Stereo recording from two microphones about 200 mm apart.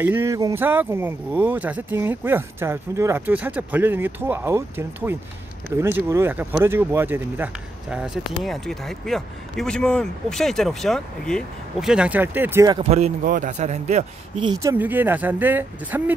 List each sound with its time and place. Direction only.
0.0 s speech: 10° right (ahead or behind)
12.9 s a man's voice: 40° right (ahead or behind)
14.4 s speech: 20° right (ahead or behind)